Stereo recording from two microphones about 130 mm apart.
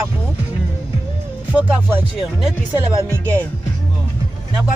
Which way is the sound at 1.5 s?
10° right (ahead or behind).